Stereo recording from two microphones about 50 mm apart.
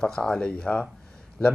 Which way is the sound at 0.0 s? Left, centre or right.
Centre.